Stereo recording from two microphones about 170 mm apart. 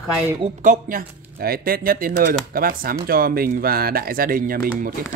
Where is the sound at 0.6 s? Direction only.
55° right (ahead or behind).